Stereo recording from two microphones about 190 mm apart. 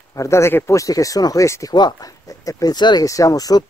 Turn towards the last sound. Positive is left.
turn(degrees=20)  # may be behind; listen again after turning